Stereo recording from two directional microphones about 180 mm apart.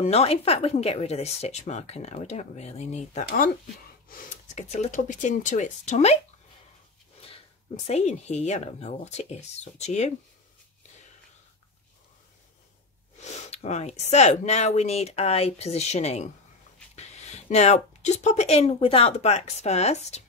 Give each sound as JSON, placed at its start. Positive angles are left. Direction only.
{"t": 0.0, "sound": "speech", "side_deg": 35}
{"t": 7.2, "sound": "speech", "side_deg": 35}
{"t": 13.2, "sound": "speech", "side_deg": 40}